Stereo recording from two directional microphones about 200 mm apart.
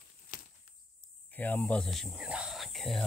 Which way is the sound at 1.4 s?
10° left (ahead or behind).